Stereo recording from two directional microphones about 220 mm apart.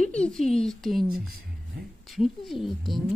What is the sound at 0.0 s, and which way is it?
A child's voice, 5° left (ahead or behind).